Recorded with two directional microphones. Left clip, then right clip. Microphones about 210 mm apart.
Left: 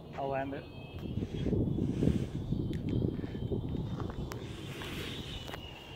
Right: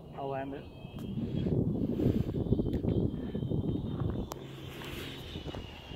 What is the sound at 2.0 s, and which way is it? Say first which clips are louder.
Vehicle: right 2 dB; centre (ahead or behind).